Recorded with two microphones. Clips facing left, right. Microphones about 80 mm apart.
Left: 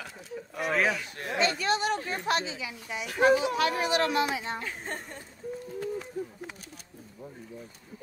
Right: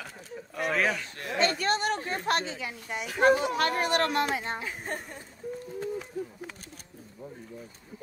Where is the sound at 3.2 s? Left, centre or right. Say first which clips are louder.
Even; right.